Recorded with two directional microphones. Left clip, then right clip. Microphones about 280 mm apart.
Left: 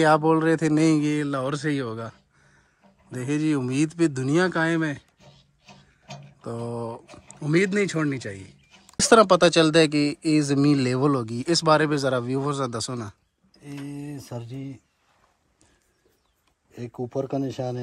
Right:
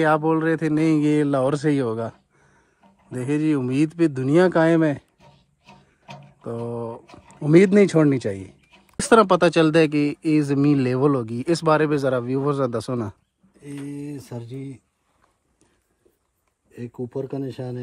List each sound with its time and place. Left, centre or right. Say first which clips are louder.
0.0 s speech: even; centre
6.0 s speech: right 3 dB; centre
8.9 s speech: even; centre
13.6 s speech: right 3 dB; centre
17.0 s speech: left 1 dB; left